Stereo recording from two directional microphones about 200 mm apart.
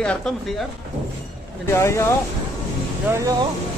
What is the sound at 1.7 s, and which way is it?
Speech, 15° left (ahead or behind).